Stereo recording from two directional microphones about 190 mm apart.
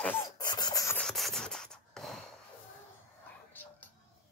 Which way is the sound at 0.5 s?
20° left (ahead or behind).